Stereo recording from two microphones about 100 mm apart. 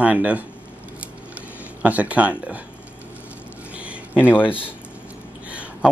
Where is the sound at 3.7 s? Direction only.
10° right (ahead or behind).